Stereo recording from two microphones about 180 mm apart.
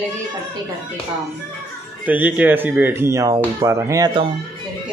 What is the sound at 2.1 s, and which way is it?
Speech, 10° right (ahead or behind).